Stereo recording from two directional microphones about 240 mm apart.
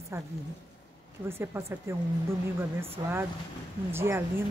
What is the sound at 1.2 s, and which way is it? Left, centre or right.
A woman's voice, centre.